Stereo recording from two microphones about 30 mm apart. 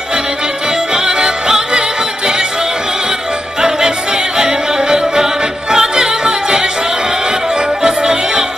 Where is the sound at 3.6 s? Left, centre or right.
Right.